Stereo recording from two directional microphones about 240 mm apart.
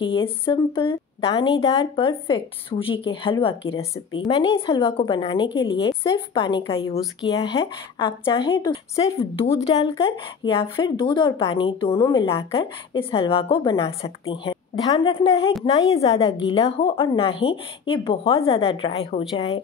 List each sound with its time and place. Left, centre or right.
0.0 s a woman's voice: centre